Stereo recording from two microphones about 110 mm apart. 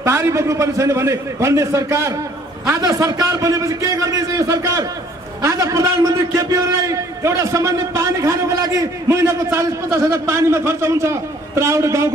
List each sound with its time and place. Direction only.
0.0 s a man's voice: 25° right (ahead or behind)